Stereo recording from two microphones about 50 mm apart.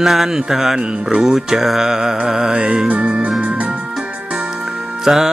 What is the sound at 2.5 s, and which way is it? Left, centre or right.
Speech, right.